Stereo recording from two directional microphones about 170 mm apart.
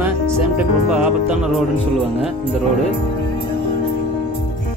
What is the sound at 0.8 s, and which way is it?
Speech, 5° right (ahead or behind).